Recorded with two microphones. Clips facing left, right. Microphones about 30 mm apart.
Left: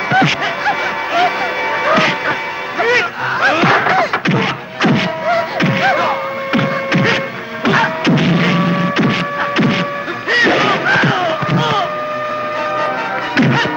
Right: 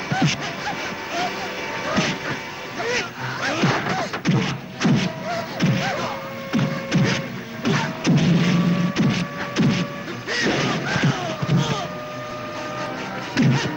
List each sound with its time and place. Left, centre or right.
0.1 s snicker: left
1.9 s music: left
2.8 s a sound: left
7.6 s music: left
10.3 s a sound: left
13.4 s music: left